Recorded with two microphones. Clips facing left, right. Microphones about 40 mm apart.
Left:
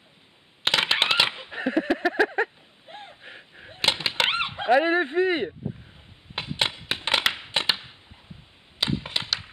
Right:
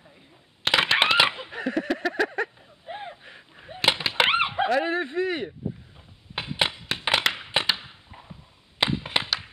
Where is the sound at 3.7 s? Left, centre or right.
Centre.